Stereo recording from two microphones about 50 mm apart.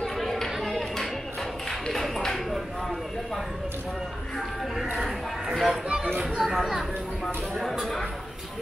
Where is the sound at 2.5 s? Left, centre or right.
Centre.